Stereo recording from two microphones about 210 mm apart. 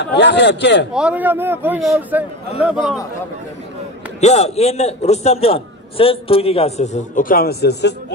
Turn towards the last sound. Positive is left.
turn(degrees=50)  # may be behind; listen again after turning